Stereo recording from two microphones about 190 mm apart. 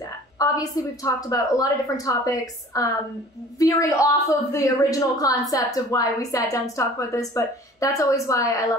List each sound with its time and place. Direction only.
0.0 s a woman's voice: 20° left (ahead or behind)